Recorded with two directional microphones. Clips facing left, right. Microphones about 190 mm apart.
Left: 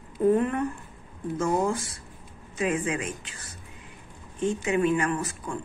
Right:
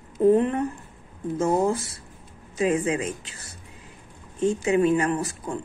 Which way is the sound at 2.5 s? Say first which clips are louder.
Right 4 dB; 35° right (ahead or behind).